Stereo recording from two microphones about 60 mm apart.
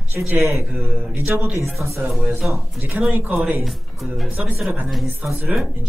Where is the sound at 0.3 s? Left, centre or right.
Right.